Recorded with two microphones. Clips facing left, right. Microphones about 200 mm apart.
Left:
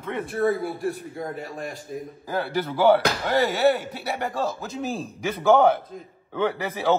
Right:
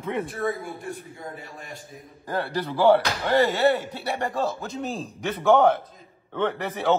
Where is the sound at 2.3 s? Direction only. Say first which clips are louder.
Left 1 dB; centre (ahead or behind).